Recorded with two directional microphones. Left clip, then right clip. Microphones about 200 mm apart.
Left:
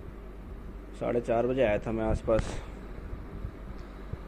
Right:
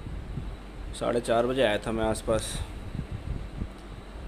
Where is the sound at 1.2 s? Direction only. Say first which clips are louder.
Right 2 dB; 25° right (ahead or behind).